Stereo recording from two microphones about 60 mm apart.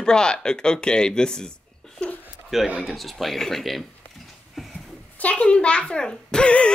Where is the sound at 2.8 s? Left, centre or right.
Centre.